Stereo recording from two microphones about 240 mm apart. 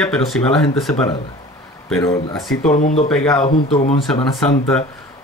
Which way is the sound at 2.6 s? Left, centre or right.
Left.